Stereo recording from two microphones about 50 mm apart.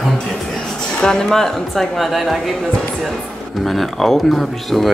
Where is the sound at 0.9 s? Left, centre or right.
Centre.